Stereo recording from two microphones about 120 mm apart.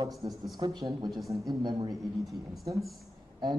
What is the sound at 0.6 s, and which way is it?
Speech, 30° right (ahead or behind).